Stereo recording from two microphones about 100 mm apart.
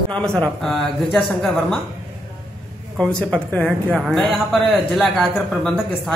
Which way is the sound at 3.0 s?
10° left (ahead or behind).